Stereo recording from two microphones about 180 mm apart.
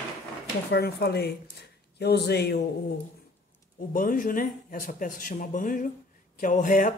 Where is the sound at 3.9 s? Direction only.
50° left (ahead or behind).